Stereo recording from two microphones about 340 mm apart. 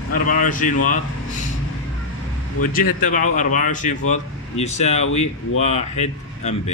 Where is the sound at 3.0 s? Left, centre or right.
Left.